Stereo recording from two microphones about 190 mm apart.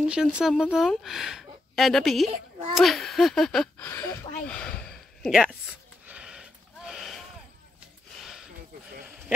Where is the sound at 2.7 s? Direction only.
Centre (ahead or behind).